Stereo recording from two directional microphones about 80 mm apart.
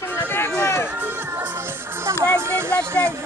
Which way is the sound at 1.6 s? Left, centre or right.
Right.